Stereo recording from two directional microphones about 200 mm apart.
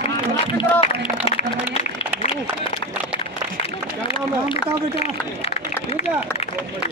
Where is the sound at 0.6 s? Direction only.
25° left (ahead or behind).